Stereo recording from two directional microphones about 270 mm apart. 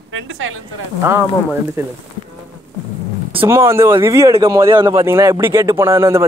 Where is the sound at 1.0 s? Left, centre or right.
Centre.